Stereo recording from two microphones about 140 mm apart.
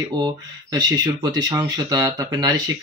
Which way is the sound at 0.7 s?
30° right (ahead or behind).